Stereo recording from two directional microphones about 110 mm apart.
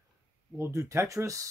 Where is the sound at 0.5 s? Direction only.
25° right (ahead or behind).